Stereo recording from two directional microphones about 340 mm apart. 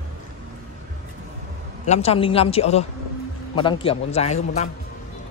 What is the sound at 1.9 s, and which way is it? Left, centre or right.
A man's voice, centre.